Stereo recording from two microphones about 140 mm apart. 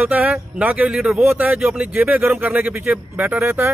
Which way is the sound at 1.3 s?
15° right (ahead or behind).